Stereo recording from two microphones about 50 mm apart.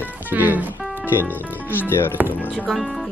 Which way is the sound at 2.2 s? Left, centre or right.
Right.